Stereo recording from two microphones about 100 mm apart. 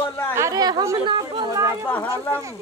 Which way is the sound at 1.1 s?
50° right (ahead or behind).